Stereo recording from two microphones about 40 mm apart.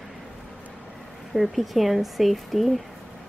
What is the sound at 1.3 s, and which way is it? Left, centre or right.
Speech, centre.